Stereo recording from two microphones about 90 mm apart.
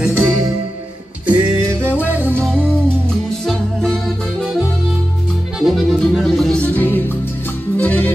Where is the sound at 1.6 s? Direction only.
30° right (ahead or behind).